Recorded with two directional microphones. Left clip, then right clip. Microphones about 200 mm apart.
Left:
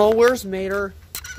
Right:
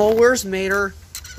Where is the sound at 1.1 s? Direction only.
50° left (ahead or behind).